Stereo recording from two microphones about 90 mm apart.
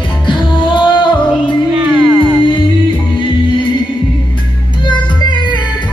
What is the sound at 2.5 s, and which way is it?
Music, 65° left (ahead or behind).